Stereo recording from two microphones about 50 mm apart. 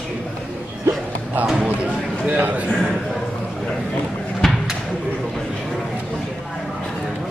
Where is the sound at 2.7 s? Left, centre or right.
Centre.